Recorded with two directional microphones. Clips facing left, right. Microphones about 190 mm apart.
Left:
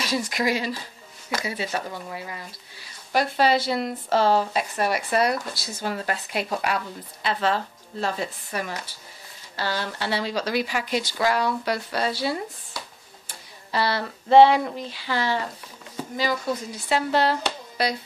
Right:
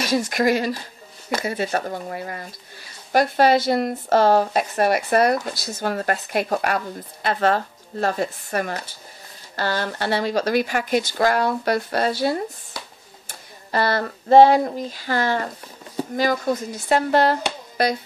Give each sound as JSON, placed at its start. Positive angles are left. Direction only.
{"t": 0.0, "sound": "speech", "side_deg": -45}
{"t": 13.3, "sound": "a sound", "side_deg": -50}
{"t": 16.2, "sound": "speech", "side_deg": -45}